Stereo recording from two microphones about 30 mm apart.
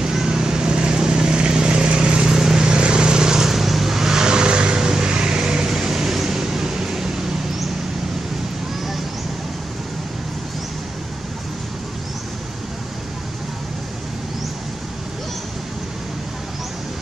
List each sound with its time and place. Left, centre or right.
0.0 s vehicle: right
2.2 s vehicle: right
3.4 s vehicle: centre